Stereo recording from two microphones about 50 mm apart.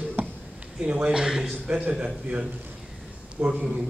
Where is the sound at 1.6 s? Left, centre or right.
Right.